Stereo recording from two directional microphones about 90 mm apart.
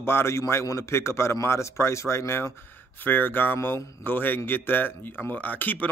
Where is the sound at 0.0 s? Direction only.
25° left (ahead or behind).